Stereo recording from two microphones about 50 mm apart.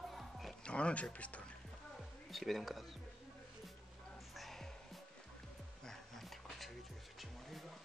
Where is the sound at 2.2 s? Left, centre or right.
Centre.